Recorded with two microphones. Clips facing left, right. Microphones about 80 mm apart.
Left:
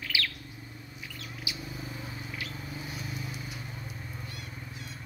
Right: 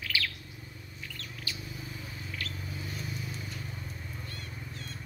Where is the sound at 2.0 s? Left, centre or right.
Left.